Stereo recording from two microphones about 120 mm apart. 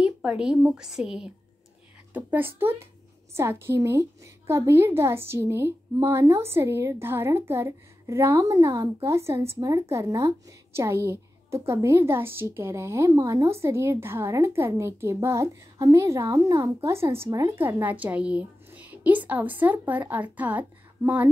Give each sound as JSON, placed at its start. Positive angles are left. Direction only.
{"t": 0.0, "sound": "a woman's voice", "side_deg": -10}
{"t": 2.1, "sound": "a woman's voice", "side_deg": -15}